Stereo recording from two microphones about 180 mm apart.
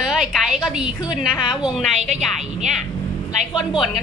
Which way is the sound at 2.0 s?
40° right (ahead or behind).